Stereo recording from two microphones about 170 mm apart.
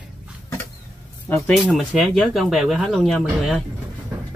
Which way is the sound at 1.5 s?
Centre (ahead or behind).